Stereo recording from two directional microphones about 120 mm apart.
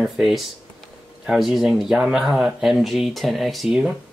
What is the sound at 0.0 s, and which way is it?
Speech, centre (ahead or behind).